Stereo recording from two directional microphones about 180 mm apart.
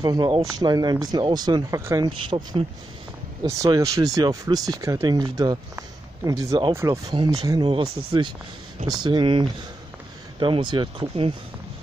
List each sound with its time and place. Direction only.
0.0 s speech: 25° right (ahead or behind)